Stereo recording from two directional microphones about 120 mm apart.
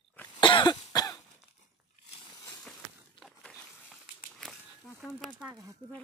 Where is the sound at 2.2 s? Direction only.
35° left (ahead or behind).